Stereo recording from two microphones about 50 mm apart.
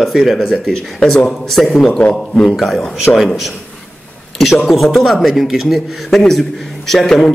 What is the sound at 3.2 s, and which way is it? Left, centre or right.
A man's voice, centre.